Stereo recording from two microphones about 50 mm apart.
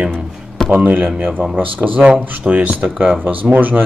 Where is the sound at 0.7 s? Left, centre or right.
Right.